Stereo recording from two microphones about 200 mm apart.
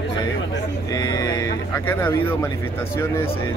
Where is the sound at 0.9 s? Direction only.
20° left (ahead or behind).